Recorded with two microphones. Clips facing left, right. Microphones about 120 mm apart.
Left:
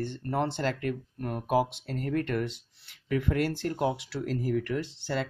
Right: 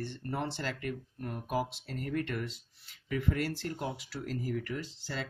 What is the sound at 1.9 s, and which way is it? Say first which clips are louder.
Speech: left 5 dB; 45° left (ahead or behind).